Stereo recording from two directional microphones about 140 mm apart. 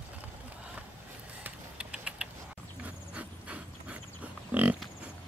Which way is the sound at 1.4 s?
5° right (ahead or behind).